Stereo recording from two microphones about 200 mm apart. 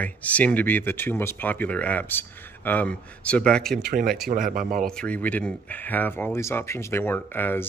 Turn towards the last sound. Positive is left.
turn(degrees=10)  # may be behind; listen again after turning